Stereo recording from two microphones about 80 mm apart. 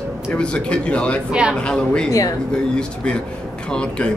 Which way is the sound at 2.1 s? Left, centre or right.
Left.